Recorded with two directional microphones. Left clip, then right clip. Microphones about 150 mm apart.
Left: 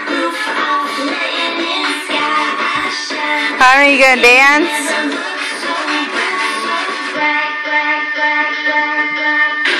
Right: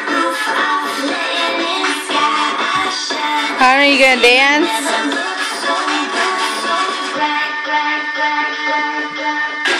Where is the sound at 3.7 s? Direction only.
10° right (ahead or behind).